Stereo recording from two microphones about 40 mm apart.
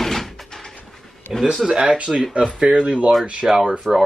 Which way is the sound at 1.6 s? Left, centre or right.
Right.